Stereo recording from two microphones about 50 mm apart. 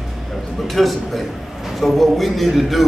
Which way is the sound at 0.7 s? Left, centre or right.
Centre.